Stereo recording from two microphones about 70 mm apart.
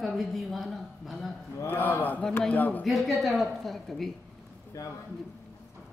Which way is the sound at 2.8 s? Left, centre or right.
Centre.